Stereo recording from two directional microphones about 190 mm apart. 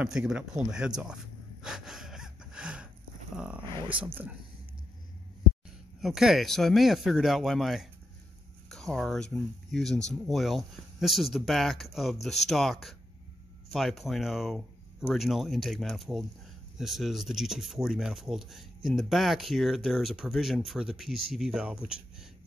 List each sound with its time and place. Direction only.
0.0 s a sound: 5° right (ahead or behind)
3.3 s speech: 5° right (ahead or behind)
3.6 s speech: 25° right (ahead or behind)
4.0 s speech: 10° right (ahead or behind)
5.9 s speech: centre (ahead or behind)